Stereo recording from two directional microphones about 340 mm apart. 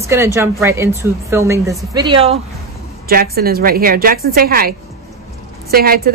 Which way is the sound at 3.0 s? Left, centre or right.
Right.